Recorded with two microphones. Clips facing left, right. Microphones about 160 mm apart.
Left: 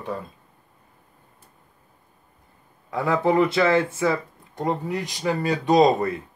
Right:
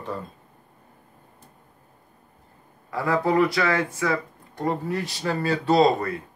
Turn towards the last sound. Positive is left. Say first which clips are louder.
# left 1 dB
turn(degrees=15)  # may be behind; listen again after turning